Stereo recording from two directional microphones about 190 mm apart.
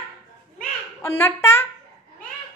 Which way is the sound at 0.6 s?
10° left (ahead or behind).